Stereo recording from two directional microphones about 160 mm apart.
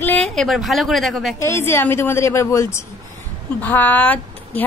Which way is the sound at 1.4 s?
15° left (ahead or behind).